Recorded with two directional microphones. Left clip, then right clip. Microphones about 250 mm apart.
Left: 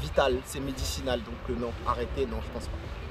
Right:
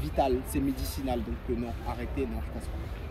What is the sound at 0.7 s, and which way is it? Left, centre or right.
Speech, left.